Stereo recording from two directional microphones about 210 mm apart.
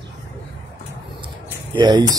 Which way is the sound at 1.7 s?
20° right (ahead or behind).